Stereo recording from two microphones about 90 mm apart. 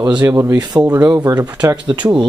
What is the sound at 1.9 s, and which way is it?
Speech, 55° right (ahead or behind).